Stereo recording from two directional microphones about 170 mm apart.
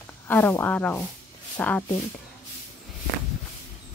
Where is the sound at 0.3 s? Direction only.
10° left (ahead or behind).